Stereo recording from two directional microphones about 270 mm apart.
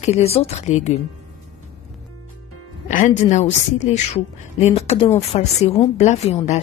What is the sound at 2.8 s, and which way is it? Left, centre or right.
A woman's voice, left.